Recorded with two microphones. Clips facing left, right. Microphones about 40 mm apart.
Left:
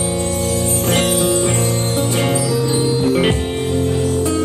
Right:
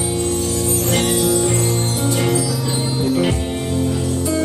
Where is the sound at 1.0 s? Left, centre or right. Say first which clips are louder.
Left 1 dB; left.